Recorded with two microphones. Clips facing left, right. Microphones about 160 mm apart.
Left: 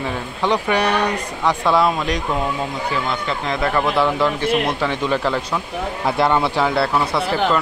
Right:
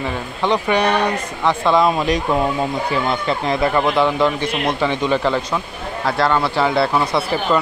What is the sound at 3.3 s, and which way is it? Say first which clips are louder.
Speech: right 3 dB; 20° right (ahead or behind).